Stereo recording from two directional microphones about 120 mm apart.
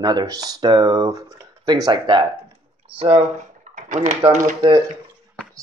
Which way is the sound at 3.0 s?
55° right (ahead or behind).